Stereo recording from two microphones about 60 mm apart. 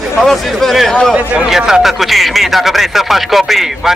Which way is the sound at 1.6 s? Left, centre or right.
Centre.